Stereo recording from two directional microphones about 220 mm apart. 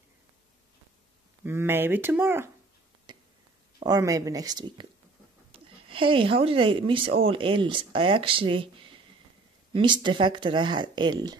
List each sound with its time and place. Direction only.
1.4 s speech: 10° right (ahead or behind)
3.1 s a sound: 20° right (ahead or behind)
3.8 s speech: 15° right (ahead or behind)